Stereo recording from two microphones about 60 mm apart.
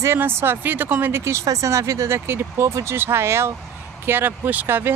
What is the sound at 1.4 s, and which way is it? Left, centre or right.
Speech, right.